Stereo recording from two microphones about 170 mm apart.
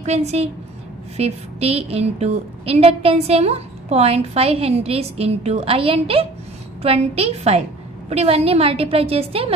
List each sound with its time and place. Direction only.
0.0 s a woman's voice: 40° right (ahead or behind)